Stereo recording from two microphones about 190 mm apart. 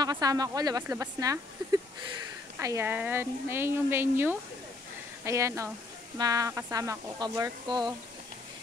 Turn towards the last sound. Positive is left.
turn(degrees=-20)  # may be behind; listen again after turning